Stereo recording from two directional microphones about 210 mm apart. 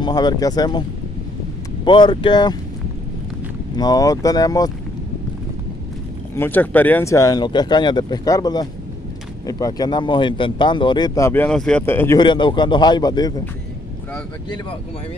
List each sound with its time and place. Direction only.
0.0 s speech: 20° left (ahead or behind)
1.9 s speech: 20° left (ahead or behind)
3.7 s speech: 20° left (ahead or behind)
6.3 s speech: 10° left (ahead or behind)
12.2 s speech: 20° left (ahead or behind)